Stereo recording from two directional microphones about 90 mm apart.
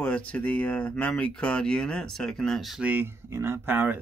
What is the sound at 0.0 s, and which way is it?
Speech, 15° left (ahead or behind).